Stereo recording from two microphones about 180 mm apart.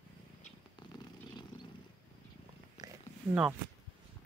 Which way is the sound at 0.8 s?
25° left (ahead or behind).